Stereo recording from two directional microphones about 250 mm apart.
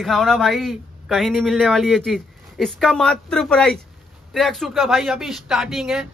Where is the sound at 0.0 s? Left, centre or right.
Centre.